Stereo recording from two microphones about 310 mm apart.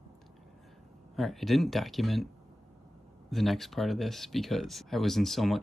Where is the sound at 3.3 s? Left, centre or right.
Centre.